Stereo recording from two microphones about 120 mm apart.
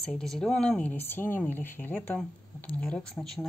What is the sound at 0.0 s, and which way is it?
Speech, 5° left (ahead or behind).